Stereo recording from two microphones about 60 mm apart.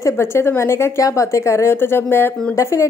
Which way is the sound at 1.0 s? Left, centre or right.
Left.